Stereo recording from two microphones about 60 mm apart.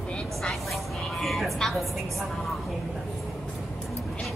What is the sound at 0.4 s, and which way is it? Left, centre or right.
Vehicle, centre.